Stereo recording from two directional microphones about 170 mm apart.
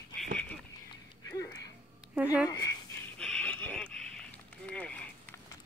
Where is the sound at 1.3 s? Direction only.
20° left (ahead or behind).